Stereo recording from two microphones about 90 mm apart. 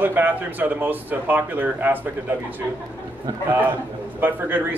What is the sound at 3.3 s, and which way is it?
Speech, 45° right (ahead or behind).